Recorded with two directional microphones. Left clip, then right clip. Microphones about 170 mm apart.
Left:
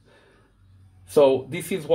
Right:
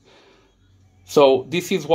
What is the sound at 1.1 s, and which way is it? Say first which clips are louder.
Speech: right 3 dB; 30° right (ahead or behind).